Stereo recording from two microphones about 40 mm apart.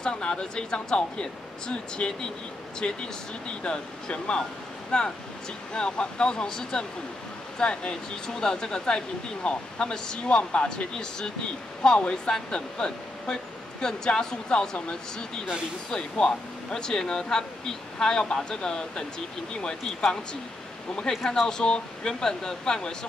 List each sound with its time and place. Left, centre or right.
0.0 s speech: centre
4.1 s speech: left
11.8 s speech: centre